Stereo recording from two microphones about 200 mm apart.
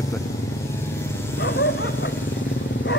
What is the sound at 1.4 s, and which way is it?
Speech, 65° left (ahead or behind).